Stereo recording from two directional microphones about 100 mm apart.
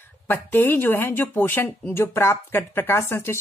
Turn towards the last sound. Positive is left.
turn(degrees=25)  # may be behind; listen again after turning